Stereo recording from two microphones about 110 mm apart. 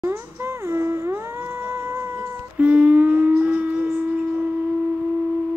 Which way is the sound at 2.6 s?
10° right (ahead or behind).